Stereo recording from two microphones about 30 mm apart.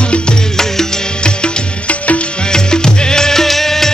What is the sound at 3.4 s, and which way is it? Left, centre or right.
Music, centre.